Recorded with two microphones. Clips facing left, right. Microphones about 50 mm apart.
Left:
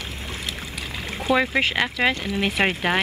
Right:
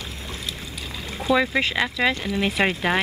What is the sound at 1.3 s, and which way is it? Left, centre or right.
Speech, left.